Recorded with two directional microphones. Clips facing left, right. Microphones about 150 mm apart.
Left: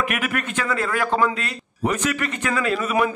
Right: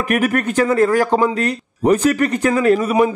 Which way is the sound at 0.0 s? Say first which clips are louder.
Right 8 dB; 40° right (ahead or behind).